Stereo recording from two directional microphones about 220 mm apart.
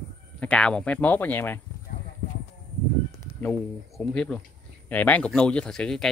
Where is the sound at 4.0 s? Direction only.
5° left (ahead or behind).